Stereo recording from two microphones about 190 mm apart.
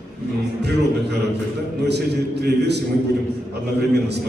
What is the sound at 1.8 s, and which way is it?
Speech, 60° right (ahead or behind).